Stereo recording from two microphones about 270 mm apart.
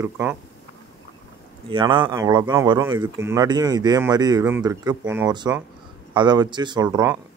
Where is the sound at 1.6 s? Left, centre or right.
Centre.